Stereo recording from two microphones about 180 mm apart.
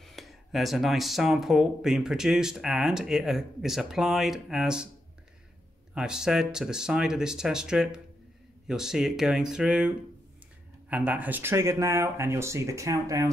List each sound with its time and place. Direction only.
0.0 s speech: centre (ahead or behind)
5.9 s speech: 5° right (ahead or behind)